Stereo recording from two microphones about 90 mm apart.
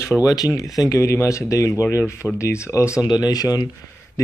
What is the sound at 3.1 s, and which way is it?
Speech, 45° left (ahead or behind).